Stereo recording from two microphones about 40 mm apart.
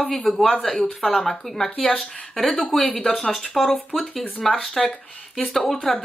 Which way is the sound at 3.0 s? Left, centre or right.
Centre.